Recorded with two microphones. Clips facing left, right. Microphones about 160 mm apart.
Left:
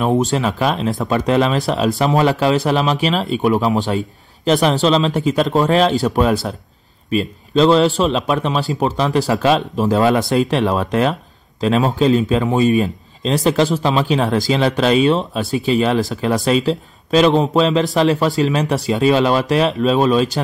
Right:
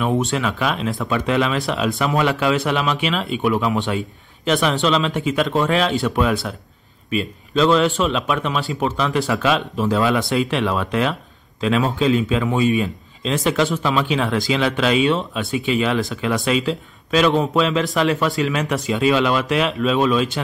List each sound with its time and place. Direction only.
0.0 s speech: 40° left (ahead or behind)